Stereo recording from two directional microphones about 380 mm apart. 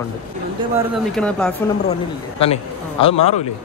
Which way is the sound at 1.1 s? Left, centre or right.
Centre.